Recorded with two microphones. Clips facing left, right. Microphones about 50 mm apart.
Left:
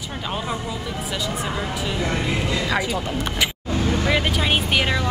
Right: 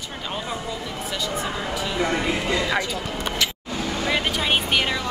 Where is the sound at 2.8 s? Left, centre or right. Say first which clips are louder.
Left 3 dB; centre.